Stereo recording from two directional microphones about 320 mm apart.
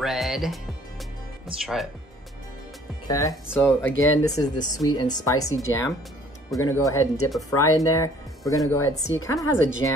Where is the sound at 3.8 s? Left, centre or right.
Left.